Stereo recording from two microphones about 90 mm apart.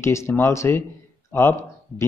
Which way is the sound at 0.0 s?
30° left (ahead or behind).